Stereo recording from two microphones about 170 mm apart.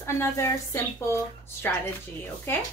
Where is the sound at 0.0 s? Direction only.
15° left (ahead or behind).